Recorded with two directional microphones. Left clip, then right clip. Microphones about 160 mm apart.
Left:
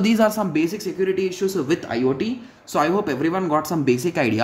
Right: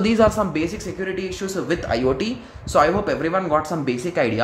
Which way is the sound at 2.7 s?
15° left (ahead or behind).